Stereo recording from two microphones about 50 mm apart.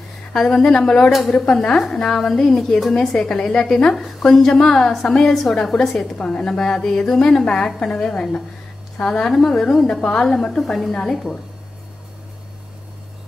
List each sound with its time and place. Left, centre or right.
0.3 s a woman's voice: centre
5.6 s a woman's voice: centre